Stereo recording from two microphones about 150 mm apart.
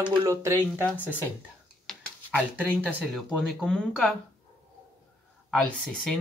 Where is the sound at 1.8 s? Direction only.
5° left (ahead or behind).